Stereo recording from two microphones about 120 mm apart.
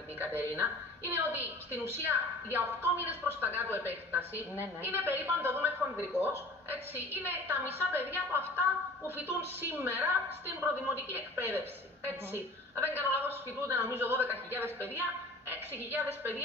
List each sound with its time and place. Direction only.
0.2 s a woman's voice: 15° right (ahead or behind)